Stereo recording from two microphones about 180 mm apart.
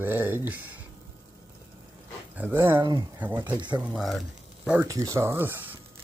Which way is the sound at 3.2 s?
10° right (ahead or behind).